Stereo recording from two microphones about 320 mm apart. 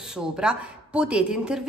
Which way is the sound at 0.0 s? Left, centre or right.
Centre.